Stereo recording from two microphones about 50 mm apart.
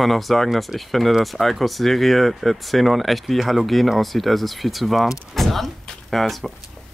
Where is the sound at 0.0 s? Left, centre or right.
Centre.